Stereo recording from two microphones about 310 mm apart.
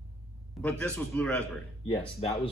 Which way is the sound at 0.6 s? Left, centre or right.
Centre.